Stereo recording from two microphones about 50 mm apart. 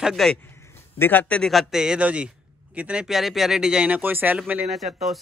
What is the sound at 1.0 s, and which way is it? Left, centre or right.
Speech, left.